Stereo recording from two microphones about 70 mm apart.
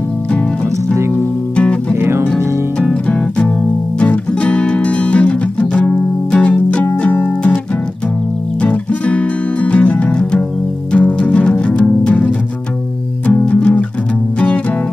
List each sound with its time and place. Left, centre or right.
1.6 s music: centre
2.0 s music: right
2.2 s music: centre